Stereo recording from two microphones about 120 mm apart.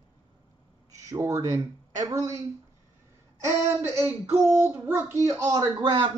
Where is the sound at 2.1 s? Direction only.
25° right (ahead or behind).